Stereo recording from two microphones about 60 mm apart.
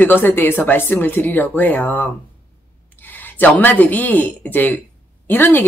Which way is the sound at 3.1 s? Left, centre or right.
Left.